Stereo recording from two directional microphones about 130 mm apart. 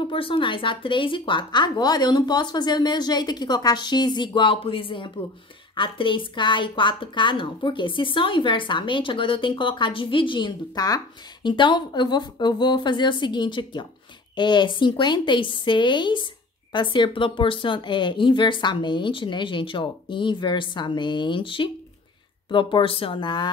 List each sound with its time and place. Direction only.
0.0 s a woman's voice: 40° left (ahead or behind)